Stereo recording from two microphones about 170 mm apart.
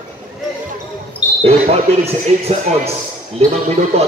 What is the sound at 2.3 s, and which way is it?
Speech, 40° right (ahead or behind).